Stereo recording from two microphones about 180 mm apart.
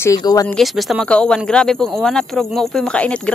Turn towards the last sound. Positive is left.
turn(degrees=5)  # may be behind; listen again after turning